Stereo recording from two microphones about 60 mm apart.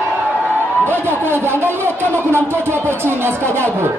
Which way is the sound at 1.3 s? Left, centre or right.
Right.